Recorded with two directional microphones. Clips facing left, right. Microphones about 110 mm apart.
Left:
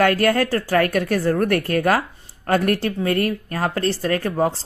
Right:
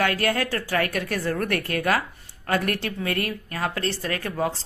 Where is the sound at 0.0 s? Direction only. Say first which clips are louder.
Left 6 dB; 45° left (ahead or behind).